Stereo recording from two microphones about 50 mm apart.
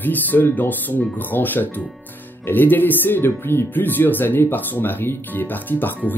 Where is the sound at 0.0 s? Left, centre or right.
Left.